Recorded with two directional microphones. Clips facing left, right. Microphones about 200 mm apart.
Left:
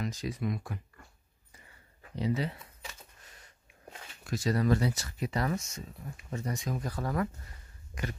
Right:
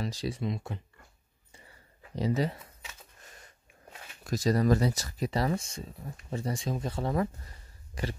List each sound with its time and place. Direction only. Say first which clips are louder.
0.0 s speech: right 1 dB; 30° right (ahead or behind)
2.1 s speech: right 3 dB; 40° right (ahead or behind)
4.3 s speech: right 3 dB; 40° right (ahead or behind)
7.9 s a sound: right 3 dB; 30° right (ahead or behind)